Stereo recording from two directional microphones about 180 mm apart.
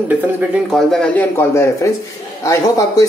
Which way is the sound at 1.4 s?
15° left (ahead or behind).